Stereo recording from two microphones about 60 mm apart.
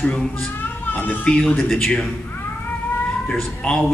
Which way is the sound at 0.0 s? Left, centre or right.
Centre.